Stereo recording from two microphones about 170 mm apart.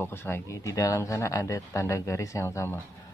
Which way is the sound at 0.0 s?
15° left (ahead or behind).